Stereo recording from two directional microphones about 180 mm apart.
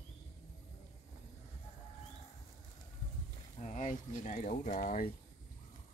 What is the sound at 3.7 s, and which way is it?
Speech, 45° left (ahead or behind).